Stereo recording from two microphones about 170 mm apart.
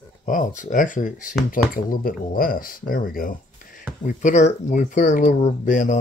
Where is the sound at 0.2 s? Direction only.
50° left (ahead or behind).